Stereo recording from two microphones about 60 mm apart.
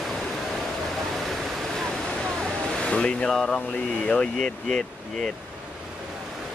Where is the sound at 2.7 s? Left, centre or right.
Centre.